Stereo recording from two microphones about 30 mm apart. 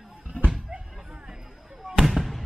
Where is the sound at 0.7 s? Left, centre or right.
Right.